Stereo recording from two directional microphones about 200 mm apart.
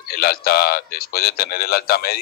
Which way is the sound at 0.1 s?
50° left (ahead or behind).